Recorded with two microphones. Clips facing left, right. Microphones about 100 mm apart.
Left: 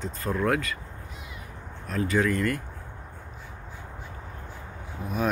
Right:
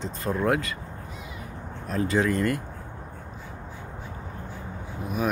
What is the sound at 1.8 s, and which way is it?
Speech, 25° right (ahead or behind).